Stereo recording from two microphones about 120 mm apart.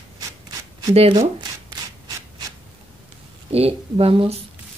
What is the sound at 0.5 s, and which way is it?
Shuffling cards, 30° right (ahead or behind).